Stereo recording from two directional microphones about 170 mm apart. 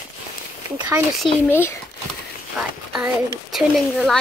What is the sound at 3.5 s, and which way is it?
Speech, centre (ahead or behind).